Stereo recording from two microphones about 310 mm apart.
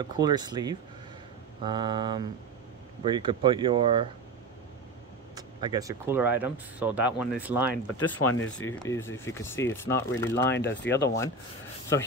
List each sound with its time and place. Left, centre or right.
0.0 s speech: centre
5.3 s speech: centre
8.0 s speech: left
8.8 s speech: centre
10.5 s speech: left